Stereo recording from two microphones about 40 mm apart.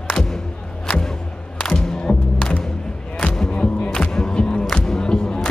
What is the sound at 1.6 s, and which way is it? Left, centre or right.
Music, left.